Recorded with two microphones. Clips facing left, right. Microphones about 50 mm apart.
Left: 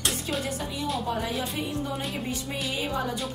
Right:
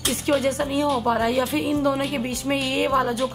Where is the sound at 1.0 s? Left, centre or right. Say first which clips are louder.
Right 8 dB; right.